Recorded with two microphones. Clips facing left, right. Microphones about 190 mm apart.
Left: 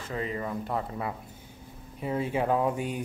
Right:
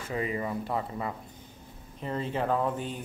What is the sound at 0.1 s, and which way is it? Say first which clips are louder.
Speech: right 1 dB; 10° right (ahead or behind).